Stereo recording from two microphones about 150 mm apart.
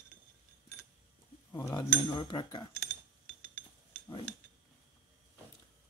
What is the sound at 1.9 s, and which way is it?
Cutlery, 30° left (ahead or behind).